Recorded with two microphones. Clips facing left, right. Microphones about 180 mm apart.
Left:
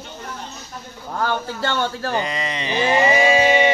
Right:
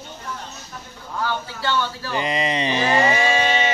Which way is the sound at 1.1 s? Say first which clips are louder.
Left 3 dB; 50° left (ahead or behind).